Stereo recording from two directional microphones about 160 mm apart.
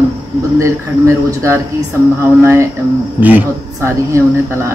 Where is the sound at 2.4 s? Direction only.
15° right (ahead or behind).